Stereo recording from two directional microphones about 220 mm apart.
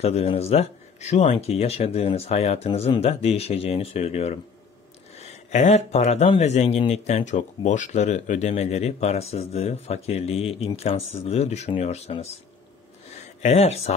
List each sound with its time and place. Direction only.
0.0 s speech: 25° left (ahead or behind)
5.5 s speech: 30° left (ahead or behind)
13.4 s speech: 30° left (ahead or behind)